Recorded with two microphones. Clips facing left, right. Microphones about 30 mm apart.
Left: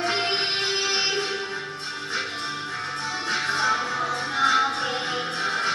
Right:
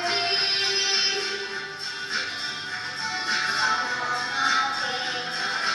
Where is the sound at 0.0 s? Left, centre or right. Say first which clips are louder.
Left 1 dB; centre.